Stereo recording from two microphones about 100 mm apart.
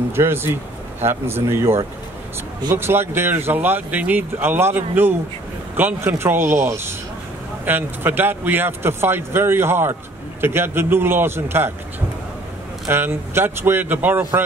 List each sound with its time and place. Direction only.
0.1 s speech: 25° right (ahead or behind)
12.8 s speech: 25° right (ahead or behind)